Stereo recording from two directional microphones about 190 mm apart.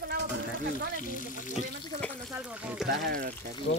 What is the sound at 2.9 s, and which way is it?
Speech, 50° right (ahead or behind).